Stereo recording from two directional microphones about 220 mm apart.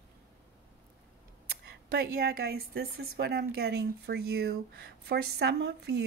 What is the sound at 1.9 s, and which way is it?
A woman's voice, 45° right (ahead or behind).